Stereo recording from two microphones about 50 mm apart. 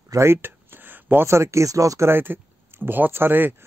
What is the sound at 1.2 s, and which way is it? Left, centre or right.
Speech, right.